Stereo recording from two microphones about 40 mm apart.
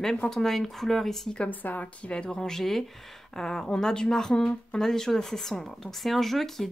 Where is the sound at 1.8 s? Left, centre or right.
Left.